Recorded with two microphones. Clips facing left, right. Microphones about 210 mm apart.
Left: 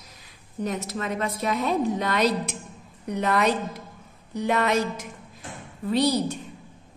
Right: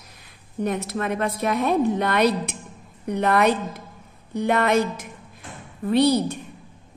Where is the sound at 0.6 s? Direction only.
60° right (ahead or behind).